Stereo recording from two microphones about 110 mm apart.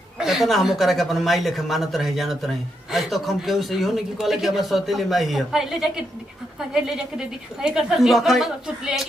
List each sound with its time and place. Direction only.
0.2 s speech: centre (ahead or behind)
7.6 s speech: 5° right (ahead or behind)